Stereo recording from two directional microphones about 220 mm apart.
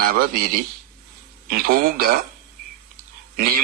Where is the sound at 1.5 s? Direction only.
40° right (ahead or behind).